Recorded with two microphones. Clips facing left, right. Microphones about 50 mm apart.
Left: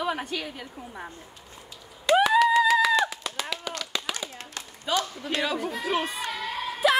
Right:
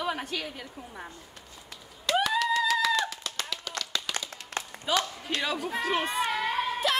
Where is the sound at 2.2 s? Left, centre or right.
Centre.